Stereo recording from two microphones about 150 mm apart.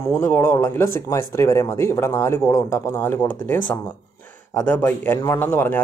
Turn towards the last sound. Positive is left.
turn(degrees=15)  # may be behind; listen again after turning